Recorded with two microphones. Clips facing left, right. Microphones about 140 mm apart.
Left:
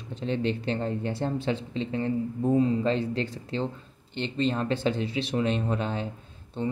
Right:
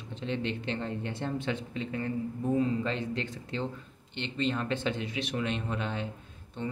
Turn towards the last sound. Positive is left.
turn(degrees=30)  # may be behind; listen again after turning